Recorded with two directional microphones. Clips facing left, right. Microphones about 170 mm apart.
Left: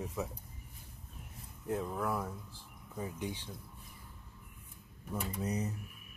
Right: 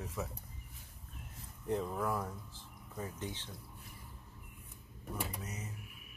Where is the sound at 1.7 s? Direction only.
Centre (ahead or behind).